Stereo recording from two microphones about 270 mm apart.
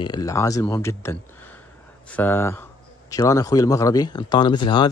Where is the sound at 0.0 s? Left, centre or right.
Centre.